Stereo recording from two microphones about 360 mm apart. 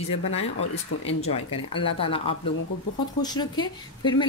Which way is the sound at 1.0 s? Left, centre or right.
Centre.